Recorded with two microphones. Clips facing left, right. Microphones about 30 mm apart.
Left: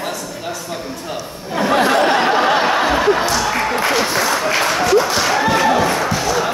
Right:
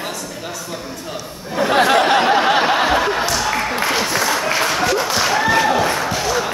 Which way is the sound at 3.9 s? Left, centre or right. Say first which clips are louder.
Left 2 dB; centre.